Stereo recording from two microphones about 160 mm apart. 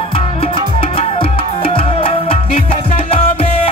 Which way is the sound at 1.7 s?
35° left (ahead or behind).